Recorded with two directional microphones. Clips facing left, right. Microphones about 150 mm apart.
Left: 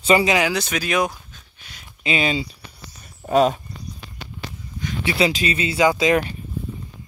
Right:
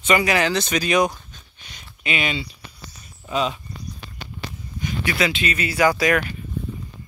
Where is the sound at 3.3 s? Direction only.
50° left (ahead or behind).